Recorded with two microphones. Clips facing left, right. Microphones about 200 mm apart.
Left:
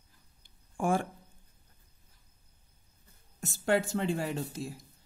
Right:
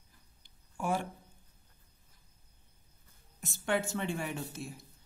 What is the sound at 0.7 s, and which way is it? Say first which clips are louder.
Speech: left 4 dB; 50° left (ahead or behind).